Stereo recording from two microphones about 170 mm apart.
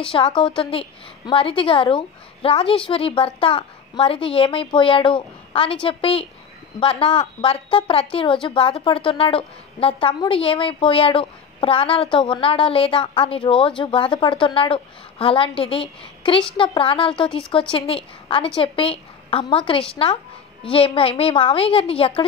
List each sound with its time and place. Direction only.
0.0 s a woman's voice: 30° left (ahead or behind)